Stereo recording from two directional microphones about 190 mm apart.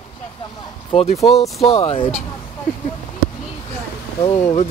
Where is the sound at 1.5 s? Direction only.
35° left (ahead or behind).